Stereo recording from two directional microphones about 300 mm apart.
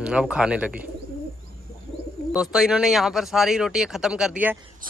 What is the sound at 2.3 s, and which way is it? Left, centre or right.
Speech, centre.